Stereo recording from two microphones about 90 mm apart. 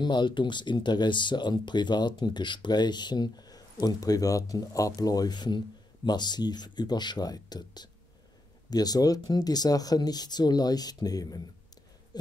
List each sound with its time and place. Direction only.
0.0 s speech: 60° left (ahead or behind)